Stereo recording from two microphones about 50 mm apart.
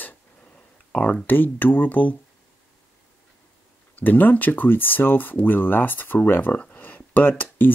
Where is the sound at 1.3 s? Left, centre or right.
Left.